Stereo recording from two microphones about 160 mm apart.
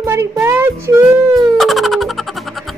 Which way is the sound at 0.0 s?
15° right (ahead or behind).